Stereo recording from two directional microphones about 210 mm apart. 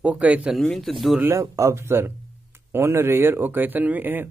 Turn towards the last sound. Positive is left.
turn(degrees=-10)  # may be behind; listen again after turning